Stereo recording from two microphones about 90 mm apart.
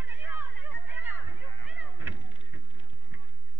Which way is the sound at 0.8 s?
20° right (ahead or behind).